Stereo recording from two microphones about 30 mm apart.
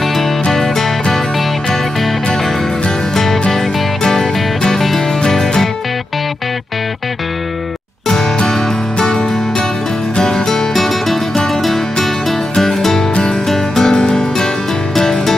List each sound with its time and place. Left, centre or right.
0.1 s music: centre
3.5 s music: centre
10.2 s music: centre
13.9 s music: left